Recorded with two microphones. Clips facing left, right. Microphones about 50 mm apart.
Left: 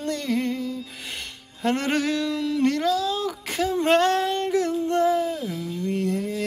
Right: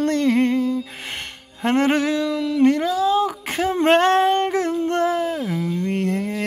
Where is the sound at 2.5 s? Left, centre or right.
Right.